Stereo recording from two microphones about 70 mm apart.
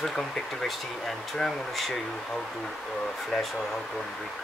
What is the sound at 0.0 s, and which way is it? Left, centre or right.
Speech, centre.